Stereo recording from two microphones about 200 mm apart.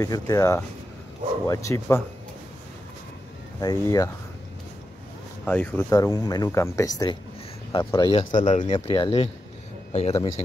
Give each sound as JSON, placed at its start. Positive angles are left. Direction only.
{"t": 0.0, "sound": "speech", "side_deg": 15}
{"t": 3.6, "sound": "speech", "side_deg": 15}
{"t": 5.4, "sound": "a man's voice", "side_deg": 10}